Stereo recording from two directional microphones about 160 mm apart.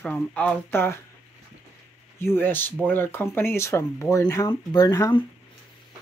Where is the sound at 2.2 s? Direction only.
15° left (ahead or behind).